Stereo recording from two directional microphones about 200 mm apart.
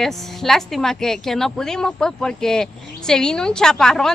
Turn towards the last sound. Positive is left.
turn(degrees=5)  # may be behind; listen again after turning